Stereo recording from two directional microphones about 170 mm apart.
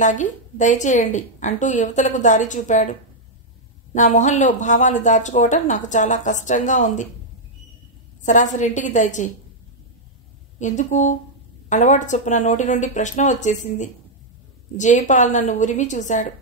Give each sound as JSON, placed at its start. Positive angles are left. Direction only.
{"t": 0.0, "sound": "speech", "side_deg": 45}
{"t": 8.2, "sound": "speech", "side_deg": 45}
{"t": 10.6, "sound": "speech", "side_deg": 45}